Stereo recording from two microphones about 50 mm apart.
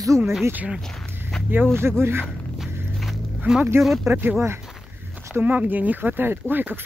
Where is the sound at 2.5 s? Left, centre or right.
Centre.